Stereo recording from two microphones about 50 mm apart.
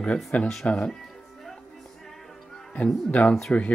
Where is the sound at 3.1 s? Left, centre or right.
Left.